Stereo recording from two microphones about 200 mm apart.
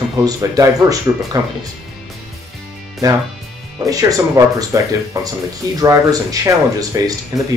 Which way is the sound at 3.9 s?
15° right (ahead or behind).